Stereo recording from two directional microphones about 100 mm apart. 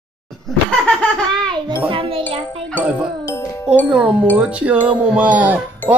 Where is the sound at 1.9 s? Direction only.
65° right (ahead or behind).